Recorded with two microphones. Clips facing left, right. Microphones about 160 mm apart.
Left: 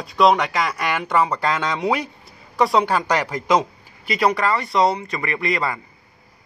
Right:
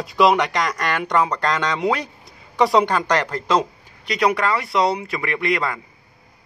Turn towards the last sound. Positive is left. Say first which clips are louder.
# right 1 dB
turn(degrees=0)  # may be behind; listen again after turning